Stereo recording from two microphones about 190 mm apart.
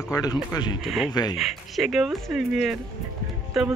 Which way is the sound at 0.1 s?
20° left (ahead or behind).